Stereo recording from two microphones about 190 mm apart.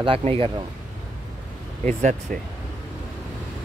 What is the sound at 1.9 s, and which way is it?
Speech, 40° right (ahead or behind).